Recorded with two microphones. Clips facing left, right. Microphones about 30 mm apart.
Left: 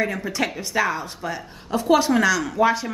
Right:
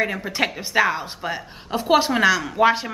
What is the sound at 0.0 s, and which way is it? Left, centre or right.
A woman's voice, right.